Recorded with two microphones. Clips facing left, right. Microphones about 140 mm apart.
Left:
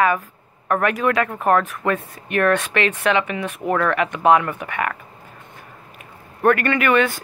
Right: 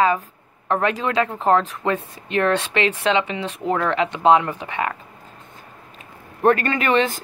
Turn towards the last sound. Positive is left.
turn(degrees=-25)  # may be behind; listen again after turning